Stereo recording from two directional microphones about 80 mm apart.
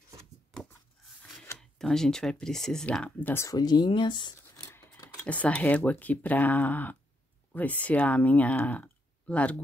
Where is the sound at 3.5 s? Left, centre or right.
Left.